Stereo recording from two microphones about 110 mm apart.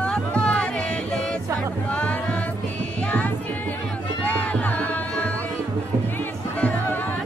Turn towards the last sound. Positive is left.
turn(degrees=15)  # may be behind; listen again after turning